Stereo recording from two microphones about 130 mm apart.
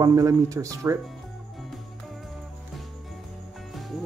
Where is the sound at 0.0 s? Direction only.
25° right (ahead or behind).